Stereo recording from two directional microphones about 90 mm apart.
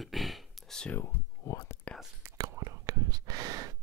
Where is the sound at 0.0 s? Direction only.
Centre (ahead or behind).